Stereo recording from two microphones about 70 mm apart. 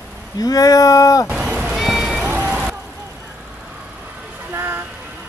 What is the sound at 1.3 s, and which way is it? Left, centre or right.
Meow, centre.